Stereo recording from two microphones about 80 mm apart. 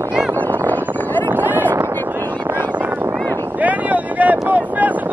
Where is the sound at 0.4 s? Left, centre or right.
Left.